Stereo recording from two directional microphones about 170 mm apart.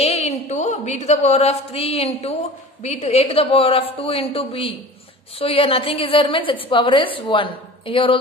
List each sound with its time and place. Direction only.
0.0 s a woman's voice: 35° left (ahead or behind)